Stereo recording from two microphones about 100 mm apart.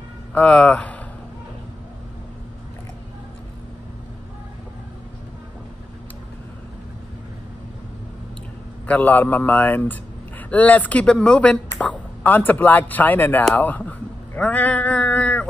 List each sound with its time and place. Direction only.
0.3 s speech: 15° left (ahead or behind)
8.8 s speech: 15° left (ahead or behind)
13.6 s a sound: 15° left (ahead or behind)